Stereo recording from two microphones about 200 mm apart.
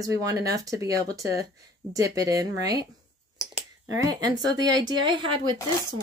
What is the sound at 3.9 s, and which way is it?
Speech, 20° right (ahead or behind).